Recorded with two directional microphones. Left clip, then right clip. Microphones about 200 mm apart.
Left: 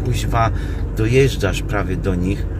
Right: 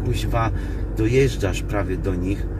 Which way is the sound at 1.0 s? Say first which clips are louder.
Left 3 dB; 15° left (ahead or behind).